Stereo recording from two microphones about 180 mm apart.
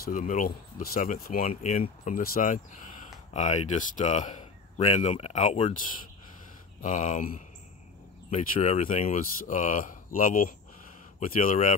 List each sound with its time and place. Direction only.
0.0 s speech: 45° left (ahead or behind)
6.8 s speech: 45° left (ahead or behind)